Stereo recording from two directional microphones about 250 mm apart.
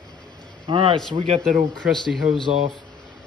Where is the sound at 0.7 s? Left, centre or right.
Right.